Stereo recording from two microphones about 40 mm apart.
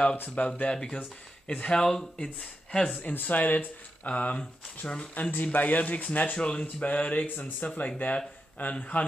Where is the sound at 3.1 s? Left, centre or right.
Left.